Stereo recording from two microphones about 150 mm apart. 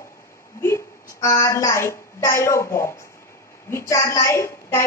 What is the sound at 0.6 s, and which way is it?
A woman's voice, 20° left (ahead or behind).